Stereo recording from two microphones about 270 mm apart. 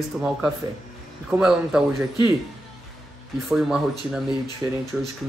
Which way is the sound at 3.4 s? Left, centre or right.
Centre.